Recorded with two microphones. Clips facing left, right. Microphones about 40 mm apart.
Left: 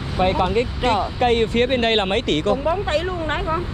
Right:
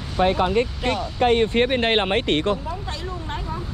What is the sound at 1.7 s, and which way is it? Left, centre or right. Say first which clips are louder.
Speech: left 1 dB; centre.